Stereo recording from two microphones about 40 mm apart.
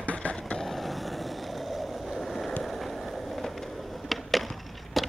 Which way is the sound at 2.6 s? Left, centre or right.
Centre.